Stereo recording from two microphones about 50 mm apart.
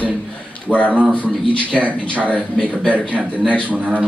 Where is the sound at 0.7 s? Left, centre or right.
Left.